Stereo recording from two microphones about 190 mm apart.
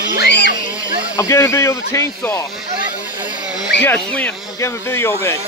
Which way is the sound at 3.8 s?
10° left (ahead or behind).